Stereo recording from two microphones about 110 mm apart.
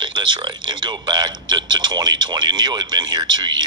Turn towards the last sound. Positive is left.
turn(degrees=-40)  # may be behind; listen again after turning